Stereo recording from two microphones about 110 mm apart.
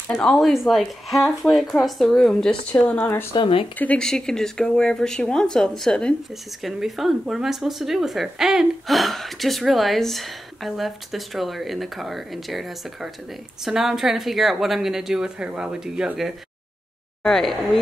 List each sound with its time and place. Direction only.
0.2 s speech: centre (ahead or behind)
2.7 s speech: 20° left (ahead or behind)
3.3 s speech: 55° left (ahead or behind)
3.7 s speech: 15° left (ahead or behind)